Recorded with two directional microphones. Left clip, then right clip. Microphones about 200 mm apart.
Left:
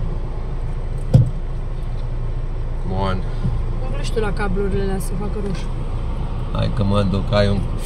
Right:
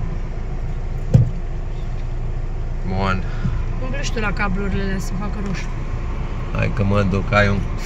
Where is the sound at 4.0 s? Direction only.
50° left (ahead or behind).